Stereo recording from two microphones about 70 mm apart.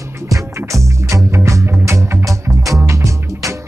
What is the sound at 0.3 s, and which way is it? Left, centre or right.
Music, right.